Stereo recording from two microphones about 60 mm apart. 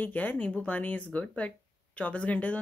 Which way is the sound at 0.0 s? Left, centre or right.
Left.